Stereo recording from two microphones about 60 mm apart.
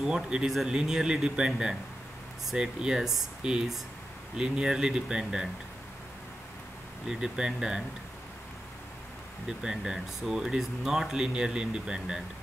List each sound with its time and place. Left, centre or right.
0.0 s speech: centre
7.1 s speech: centre
9.5 s speech: centre